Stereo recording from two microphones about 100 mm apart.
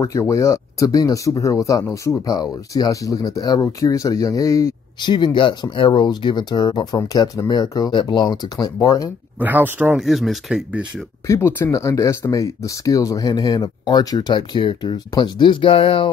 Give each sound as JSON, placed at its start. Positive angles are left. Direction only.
{"t": 0.0, "sound": "speech", "side_deg": 30}
{"t": 5.0, "sound": "speech", "side_deg": 50}
{"t": 9.4, "sound": "speech", "side_deg": -15}
{"t": 9.9, "sound": "speech", "side_deg": 0}
{"t": 11.2, "sound": "speech", "side_deg": 25}